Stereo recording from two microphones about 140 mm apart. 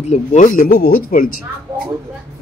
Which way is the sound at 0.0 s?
55° left (ahead or behind).